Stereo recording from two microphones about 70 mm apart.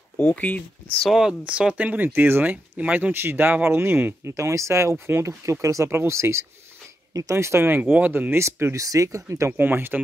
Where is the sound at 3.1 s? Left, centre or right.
Right.